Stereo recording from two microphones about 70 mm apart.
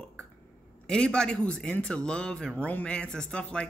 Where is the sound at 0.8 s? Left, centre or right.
Centre.